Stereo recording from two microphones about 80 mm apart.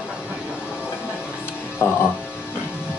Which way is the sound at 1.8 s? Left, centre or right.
Left.